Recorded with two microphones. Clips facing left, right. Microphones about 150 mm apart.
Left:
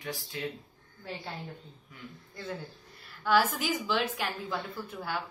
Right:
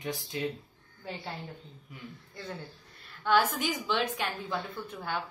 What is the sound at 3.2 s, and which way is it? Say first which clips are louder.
A woman's voice: even; 5° left (ahead or behind).